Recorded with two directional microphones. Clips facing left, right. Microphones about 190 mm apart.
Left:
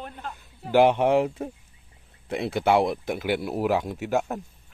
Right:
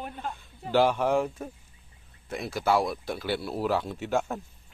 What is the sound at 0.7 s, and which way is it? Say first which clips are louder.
Speech: left 4 dB; 20° left (ahead or behind).